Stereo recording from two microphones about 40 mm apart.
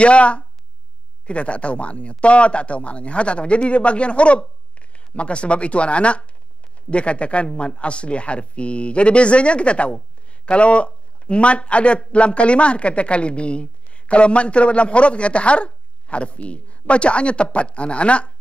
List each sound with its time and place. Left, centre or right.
0.0 s speech: left